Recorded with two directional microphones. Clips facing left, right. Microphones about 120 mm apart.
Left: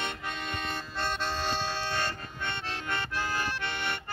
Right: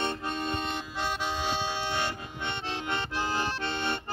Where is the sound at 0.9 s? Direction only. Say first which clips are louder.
Even; 10° right (ahead or behind).